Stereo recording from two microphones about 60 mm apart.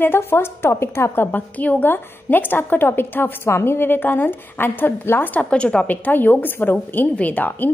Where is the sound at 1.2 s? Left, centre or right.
Left.